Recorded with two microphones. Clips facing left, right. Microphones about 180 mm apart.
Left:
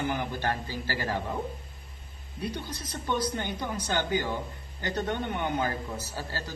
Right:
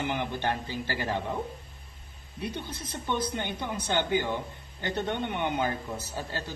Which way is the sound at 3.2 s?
20° right (ahead or behind).